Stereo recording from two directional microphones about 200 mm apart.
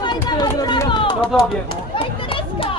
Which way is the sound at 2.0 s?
25° left (ahead or behind).